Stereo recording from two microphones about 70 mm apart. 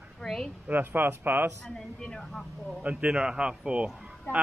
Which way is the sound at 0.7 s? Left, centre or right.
Right.